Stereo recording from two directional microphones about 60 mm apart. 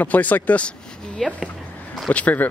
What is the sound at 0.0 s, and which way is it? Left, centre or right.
Speech, left.